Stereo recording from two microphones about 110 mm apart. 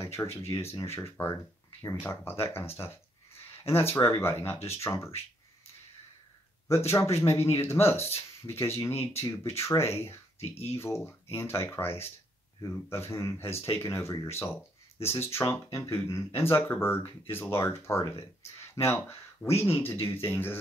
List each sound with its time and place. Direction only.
0.0 s speech: 25° left (ahead or behind)
3.3 s a sound: 20° left (ahead or behind)
3.9 s speech: 20° left (ahead or behind)
6.9 s speech: 25° left (ahead or behind)